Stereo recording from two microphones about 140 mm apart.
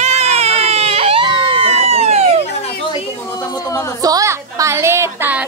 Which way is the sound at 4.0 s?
25° right (ahead or behind).